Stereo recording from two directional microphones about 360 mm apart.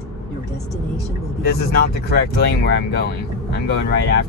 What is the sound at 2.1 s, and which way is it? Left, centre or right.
Speech, left.